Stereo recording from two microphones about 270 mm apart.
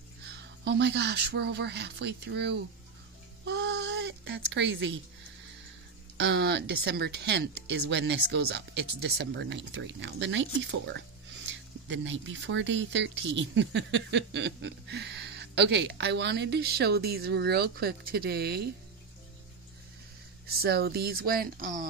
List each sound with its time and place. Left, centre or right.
0.2 s speech: right
3.4 s a sound: right
6.1 s speech: right
20.4 s speech: right